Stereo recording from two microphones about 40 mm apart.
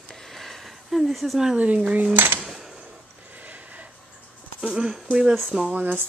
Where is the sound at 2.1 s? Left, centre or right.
Right.